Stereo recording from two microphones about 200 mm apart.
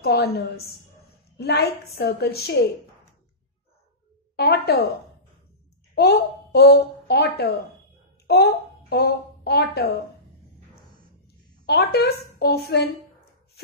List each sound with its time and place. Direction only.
0.0 s a woman's voice: 55° left (ahead or behind)
4.4 s a woman's voice: 50° left (ahead or behind)
5.9 s a woman's voice: 55° left (ahead or behind)
11.6 s a woman's voice: 55° left (ahead or behind)